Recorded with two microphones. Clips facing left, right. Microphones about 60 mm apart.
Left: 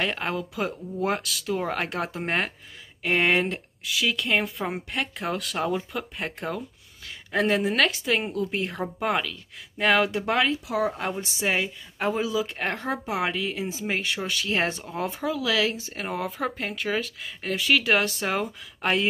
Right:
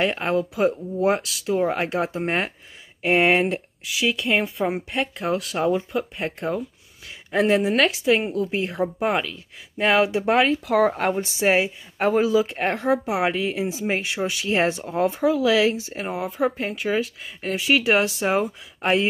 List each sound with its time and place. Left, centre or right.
0.0 s speech: centre
3.0 s speech: right
3.8 s speech: centre
7.2 s speech: centre
9.0 s speech: centre
10.7 s speech: right
11.1 s speech: right
12.9 s speech: centre
13.3 s speech: right
16.1 s speech: centre